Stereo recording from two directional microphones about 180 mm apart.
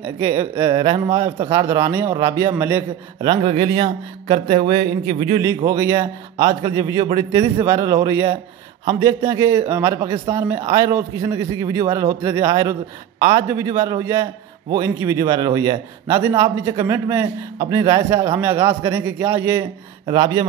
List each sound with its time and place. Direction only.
0.0 s a man's voice: 15° right (ahead or behind)
3.2 s a man's voice: 25° right (ahead or behind)
5.7 s a man's voice: 20° right (ahead or behind)